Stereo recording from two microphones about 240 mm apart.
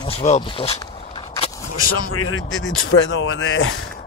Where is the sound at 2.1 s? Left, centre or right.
Left.